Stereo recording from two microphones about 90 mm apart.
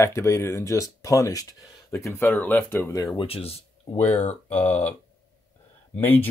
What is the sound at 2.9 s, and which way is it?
Speech, 35° left (ahead or behind).